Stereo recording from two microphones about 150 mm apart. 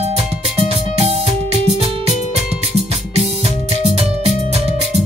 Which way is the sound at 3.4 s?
45° right (ahead or behind).